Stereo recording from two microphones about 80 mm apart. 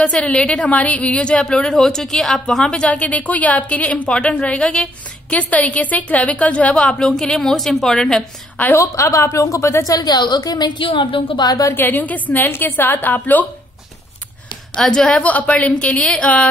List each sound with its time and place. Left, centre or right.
0.0 s a woman's voice: centre
8.7 s a woman's voice: left
9.9 s a woman's voice: left
11.4 s a woman's voice: left
11.7 s a woman's voice: left
14.8 s a woman's voice: centre
15.2 s a woman's voice: centre